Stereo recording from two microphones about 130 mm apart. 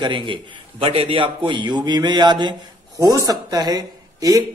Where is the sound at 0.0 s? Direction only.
40° right (ahead or behind).